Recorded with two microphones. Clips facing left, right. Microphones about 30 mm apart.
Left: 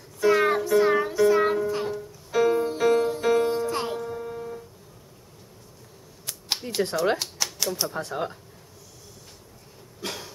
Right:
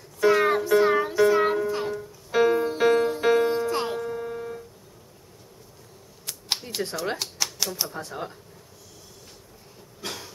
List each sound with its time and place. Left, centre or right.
0.3 s music: centre
2.3 s music: centre
7.0 s speech: centre
8.1 s speech: centre
10.0 s a sound: centre